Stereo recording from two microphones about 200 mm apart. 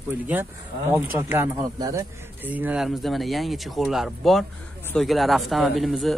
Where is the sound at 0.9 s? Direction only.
10° right (ahead or behind).